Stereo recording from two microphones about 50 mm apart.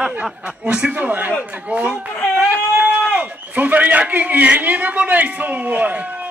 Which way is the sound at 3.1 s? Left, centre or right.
Right.